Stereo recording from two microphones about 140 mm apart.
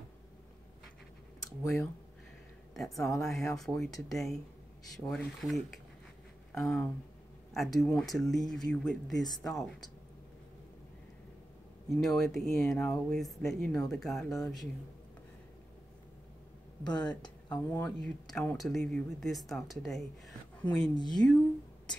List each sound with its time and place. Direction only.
2.7 s speech: centre (ahead or behind)
12.0 s speech: centre (ahead or behind)
16.8 s speech: 30° left (ahead or behind)
17.6 s speech: 15° left (ahead or behind)